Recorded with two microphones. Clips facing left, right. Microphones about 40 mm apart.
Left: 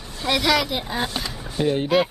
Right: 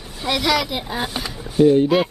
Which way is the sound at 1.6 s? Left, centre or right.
Left.